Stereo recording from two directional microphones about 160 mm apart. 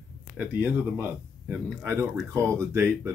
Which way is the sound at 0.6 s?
10° right (ahead or behind).